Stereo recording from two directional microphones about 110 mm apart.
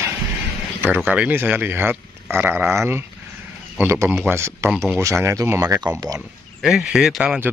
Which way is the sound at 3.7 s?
25° right (ahead or behind).